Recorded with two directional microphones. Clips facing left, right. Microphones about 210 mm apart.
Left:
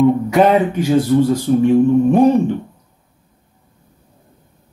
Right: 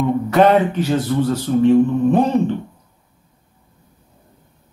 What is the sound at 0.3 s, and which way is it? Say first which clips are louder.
Speech: left 1 dB; 15° left (ahead or behind).